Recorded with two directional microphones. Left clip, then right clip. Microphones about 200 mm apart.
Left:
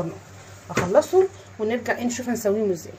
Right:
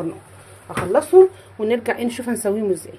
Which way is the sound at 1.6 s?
50° right (ahead or behind).